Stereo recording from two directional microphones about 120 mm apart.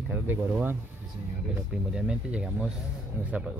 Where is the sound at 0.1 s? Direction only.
15° right (ahead or behind).